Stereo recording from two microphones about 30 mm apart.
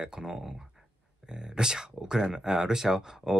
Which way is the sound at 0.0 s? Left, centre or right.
Centre.